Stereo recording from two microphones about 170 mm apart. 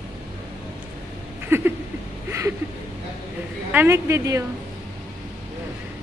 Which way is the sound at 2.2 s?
15° right (ahead or behind).